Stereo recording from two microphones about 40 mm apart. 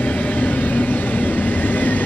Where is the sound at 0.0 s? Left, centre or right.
Left.